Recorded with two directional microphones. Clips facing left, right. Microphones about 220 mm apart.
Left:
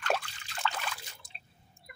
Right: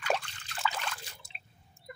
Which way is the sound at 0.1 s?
Centre (ahead or behind).